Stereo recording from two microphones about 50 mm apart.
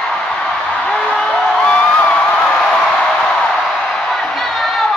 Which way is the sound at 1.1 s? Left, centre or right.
Centre.